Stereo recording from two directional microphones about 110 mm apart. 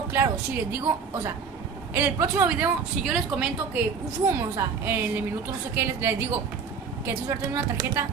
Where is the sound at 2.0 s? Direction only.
20° right (ahead or behind).